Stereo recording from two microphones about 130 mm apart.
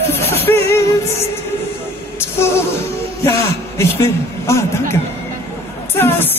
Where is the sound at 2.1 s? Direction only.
20° left (ahead or behind).